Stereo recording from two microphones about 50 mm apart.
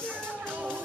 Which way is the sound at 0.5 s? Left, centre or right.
Right.